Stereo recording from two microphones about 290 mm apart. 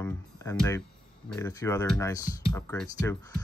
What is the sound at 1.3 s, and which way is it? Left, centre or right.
Speech, centre.